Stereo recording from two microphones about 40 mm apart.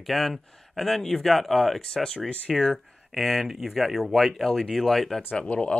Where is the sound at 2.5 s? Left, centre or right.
Centre.